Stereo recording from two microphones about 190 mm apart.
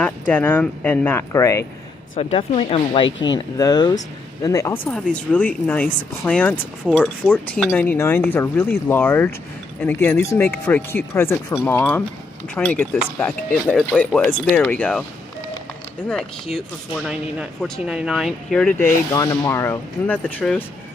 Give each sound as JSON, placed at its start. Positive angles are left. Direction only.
{"t": 0.3, "sound": "speech", "side_deg": 10}
{"t": 2.1, "sound": "speech", "side_deg": 30}
{"t": 16.5, "sound": "speech", "side_deg": -5}
{"t": 19.1, "sound": "speech", "side_deg": 20}